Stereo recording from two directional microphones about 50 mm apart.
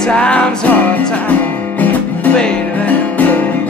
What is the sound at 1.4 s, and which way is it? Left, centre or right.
Music, left.